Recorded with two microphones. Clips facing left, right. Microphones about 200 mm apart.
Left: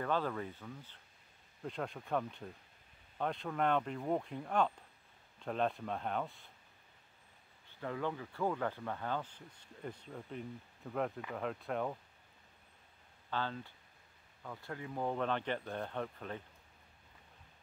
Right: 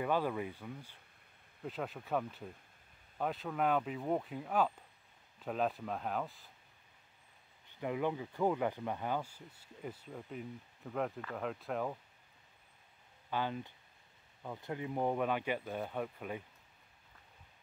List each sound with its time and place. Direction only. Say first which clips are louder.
0.0 s speech: right 2 dB; 10° right (ahead or behind)
7.8 s speech: right 3 dB; 15° right (ahead or behind)
13.3 s speech: right 2 dB; 15° right (ahead or behind)